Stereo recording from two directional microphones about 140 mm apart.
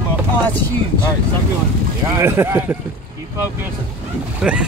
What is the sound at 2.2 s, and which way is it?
Speech, 15° right (ahead or behind).